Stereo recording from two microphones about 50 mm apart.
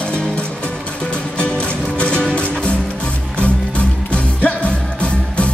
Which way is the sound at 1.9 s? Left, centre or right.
Left.